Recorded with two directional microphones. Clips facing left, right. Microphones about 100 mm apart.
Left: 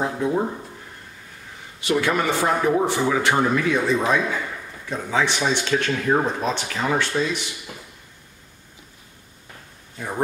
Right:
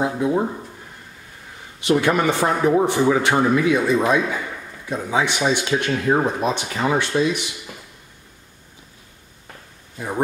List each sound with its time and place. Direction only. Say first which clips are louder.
0.0 s speech: right 2 dB; 10° right (ahead or behind)
1.8 s speech: right 3 dB; 15° right (ahead or behind)
9.9 s speech: right 3 dB; 10° right (ahead or behind)